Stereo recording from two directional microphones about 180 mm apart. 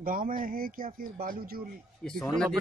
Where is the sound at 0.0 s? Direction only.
50° right (ahead or behind).